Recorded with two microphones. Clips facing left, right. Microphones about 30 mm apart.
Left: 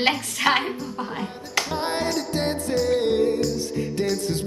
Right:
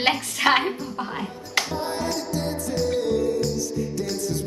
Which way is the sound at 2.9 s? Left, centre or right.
Left.